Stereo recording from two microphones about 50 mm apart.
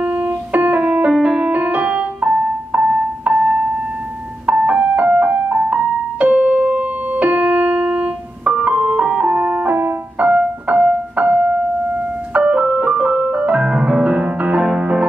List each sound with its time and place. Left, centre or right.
0.0 s piano: right
0.7 s music: right
1.5 s music: right
9.3 s music: right
12.4 s piano: right
14.2 s music: right